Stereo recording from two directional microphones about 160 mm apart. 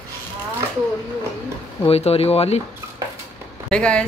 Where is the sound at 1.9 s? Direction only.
40° left (ahead or behind).